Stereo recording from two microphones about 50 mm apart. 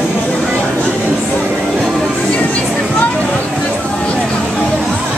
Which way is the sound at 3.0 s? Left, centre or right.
Left.